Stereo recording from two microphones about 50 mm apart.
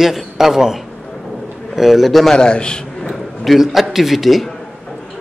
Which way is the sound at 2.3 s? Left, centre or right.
Centre.